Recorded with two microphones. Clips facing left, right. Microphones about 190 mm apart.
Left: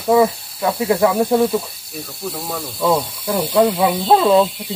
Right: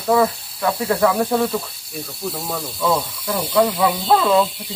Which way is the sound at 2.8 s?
20° left (ahead or behind).